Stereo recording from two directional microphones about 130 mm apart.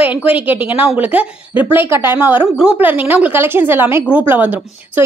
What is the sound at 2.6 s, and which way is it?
A woman's voice, 10° right (ahead or behind).